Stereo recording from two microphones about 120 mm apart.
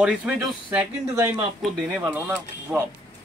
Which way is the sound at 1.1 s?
20° right (ahead or behind).